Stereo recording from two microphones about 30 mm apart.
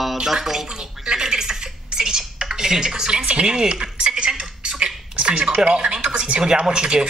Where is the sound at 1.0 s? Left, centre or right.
Right.